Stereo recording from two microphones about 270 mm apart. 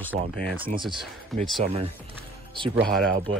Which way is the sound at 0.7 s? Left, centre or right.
Centre.